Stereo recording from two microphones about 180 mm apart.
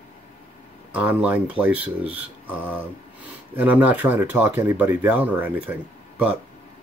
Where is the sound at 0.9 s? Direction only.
5° right (ahead or behind).